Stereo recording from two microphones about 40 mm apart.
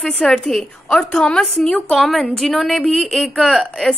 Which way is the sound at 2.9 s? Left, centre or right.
Centre.